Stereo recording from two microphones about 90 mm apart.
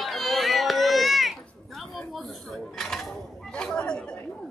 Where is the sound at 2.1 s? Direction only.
Centre (ahead or behind).